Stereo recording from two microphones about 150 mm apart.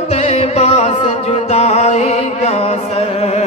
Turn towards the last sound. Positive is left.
turn(degrees=45)  # may be behind; listen again after turning